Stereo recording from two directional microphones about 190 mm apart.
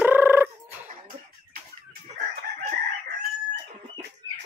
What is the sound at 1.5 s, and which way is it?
Chicken, 50° right (ahead or behind).